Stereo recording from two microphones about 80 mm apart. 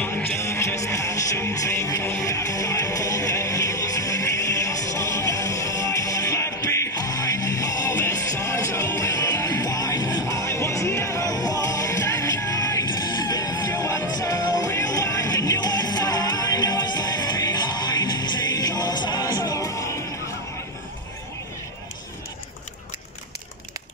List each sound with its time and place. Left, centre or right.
0.0 s music: centre
0.4 s music: left
7.0 s music: left